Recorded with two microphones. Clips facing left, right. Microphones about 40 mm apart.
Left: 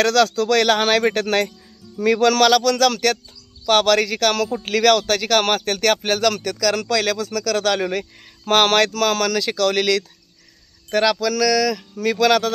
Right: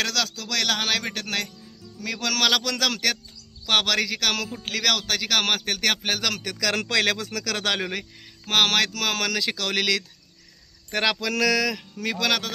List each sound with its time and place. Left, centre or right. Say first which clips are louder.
0.0 s speech: left 11 dB; centre
2.5 s speech: left 8 dB; centre
6.7 s speech: left 1 dB; right
8.0 s speech: left 7 dB; centre
10.9 s speech: left 6 dB; centre
12.0 s speech: left 8 dB; centre